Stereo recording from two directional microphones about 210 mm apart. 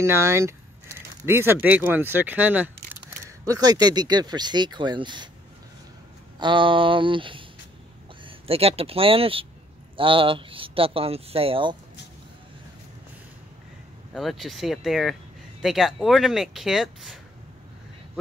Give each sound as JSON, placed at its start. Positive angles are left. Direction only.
{"t": 0.0, "sound": "speech", "side_deg": -10}
{"t": 6.4, "sound": "speech", "side_deg": -25}
{"t": 14.1, "sound": "speech", "side_deg": 0}